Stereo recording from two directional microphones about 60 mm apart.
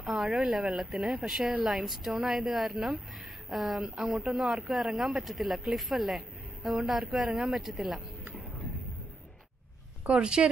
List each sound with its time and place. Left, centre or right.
0.1 s a woman's voice: centre
7.2 s speech: centre
7.5 s speech: centre
10.0 s speech: centre